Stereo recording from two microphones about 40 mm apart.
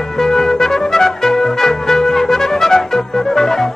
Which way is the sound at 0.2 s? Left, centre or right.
Centre.